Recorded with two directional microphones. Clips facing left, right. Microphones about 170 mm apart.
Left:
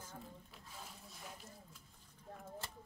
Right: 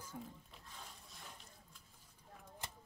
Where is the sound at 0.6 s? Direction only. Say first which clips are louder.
Left 2 dB; 5° left (ahead or behind).